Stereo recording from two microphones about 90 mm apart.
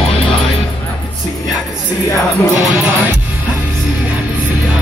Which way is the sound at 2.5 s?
20° right (ahead or behind).